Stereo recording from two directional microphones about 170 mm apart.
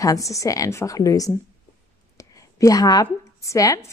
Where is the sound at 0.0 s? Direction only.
20° left (ahead or behind).